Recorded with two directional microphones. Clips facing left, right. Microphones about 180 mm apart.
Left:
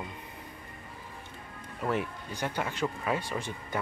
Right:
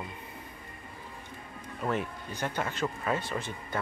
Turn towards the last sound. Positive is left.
turn(degrees=15)  # may be behind; listen again after turning